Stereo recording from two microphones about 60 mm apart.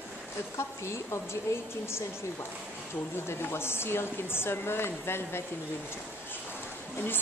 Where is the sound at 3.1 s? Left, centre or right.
Left.